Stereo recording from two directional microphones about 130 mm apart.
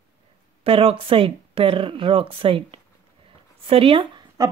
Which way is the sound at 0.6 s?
45° right (ahead or behind).